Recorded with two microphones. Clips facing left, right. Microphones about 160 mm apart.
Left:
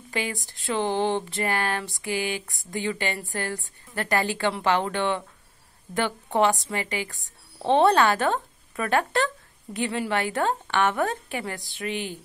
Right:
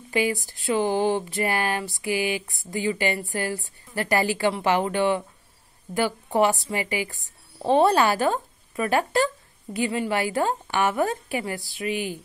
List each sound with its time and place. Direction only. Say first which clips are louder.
0.1 s a woman's voice: right 6 dB; 5° right (ahead or behind)
3.3 s a woman's voice: right 3 dB; 15° right (ahead or behind)